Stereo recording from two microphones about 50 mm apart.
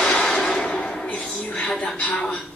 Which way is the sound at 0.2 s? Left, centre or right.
Centre.